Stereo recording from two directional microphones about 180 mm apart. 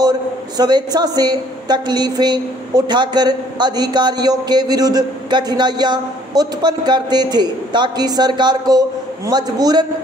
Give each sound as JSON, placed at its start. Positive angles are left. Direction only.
{"t": 0.6, "sound": "a woman's voice", "side_deg": -25}